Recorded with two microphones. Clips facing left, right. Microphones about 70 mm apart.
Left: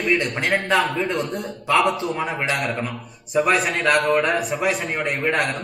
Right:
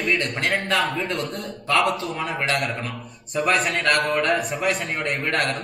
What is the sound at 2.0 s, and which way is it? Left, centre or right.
A man's voice, centre.